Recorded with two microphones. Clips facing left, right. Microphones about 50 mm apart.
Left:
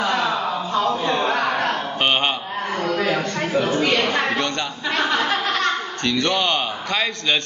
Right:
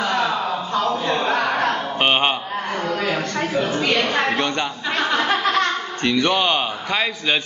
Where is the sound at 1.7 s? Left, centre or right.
Centre.